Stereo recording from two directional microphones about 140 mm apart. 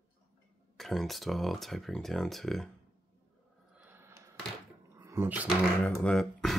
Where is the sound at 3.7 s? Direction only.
10° right (ahead or behind).